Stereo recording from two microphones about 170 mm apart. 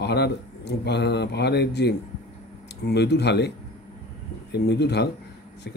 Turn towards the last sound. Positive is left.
turn(degrees=80)